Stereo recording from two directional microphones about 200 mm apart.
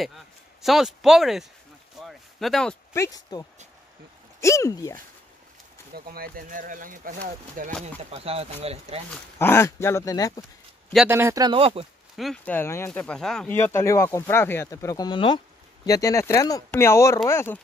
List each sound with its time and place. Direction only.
0.6 s speech: centre (ahead or behind)
2.0 s a sound: centre (ahead or behind)
3.0 s speech: 20° left (ahead or behind)
5.9 s speech: 50° right (ahead or behind)
7.8 s speech: 30° right (ahead or behind)
9.4 s speech: 10° left (ahead or behind)
11.1 s speech: 15° right (ahead or behind)
12.2 s speech: 5° left (ahead or behind)